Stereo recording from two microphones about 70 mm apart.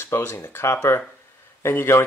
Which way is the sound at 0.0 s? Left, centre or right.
Left.